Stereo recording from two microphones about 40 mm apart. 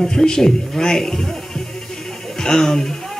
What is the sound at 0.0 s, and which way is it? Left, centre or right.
Speech, centre.